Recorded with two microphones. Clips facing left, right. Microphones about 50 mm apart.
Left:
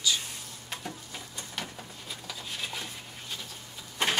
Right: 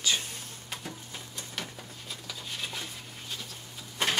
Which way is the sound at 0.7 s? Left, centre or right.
Centre.